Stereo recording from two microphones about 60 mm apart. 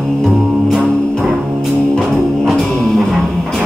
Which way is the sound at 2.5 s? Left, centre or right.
Centre.